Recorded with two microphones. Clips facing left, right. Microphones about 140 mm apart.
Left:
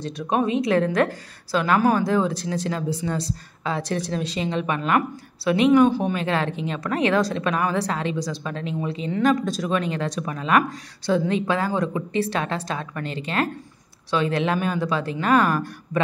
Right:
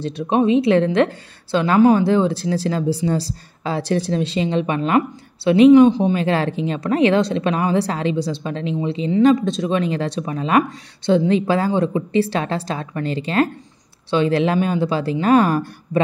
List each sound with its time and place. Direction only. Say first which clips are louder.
0.0 s speech: right 5 dB; 30° right (ahead or behind)
6.1 s a woman's voice: right 5 dB; 30° right (ahead or behind)